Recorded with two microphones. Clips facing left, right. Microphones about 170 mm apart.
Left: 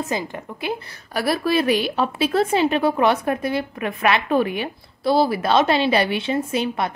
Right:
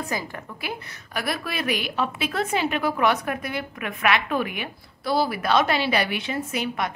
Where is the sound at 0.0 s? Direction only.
20° left (ahead or behind).